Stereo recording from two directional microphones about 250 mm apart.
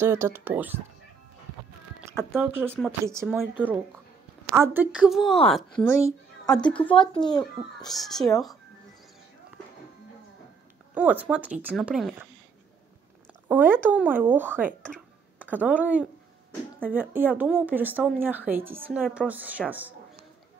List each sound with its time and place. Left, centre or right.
0.0 s a woman's voice: centre
2.3 s a woman's voice: centre
6.9 s a child's voice: centre
8.0 s a woman's voice: centre
11.0 s a woman's voice: centre
13.5 s a woman's voice: centre